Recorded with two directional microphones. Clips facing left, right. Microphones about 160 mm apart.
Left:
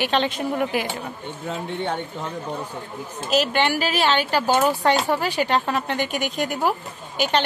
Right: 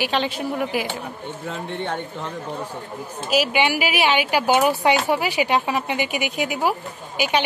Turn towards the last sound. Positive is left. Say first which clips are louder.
# even
turn(degrees=-10)  # may be behind; listen again after turning